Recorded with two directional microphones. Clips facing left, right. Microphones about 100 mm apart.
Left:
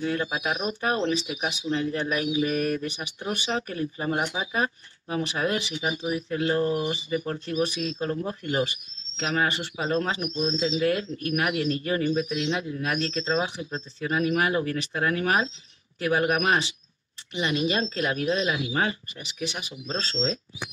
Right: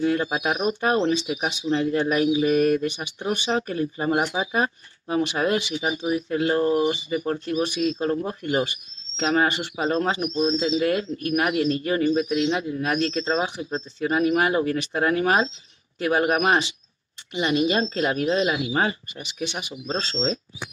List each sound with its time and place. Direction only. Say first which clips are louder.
0.0 s speech: right 5 dB; 25° right (ahead or behind)